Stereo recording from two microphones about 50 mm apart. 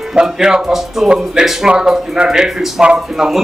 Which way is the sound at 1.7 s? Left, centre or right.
Centre.